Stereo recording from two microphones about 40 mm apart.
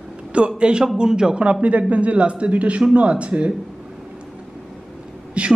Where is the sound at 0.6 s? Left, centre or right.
Right.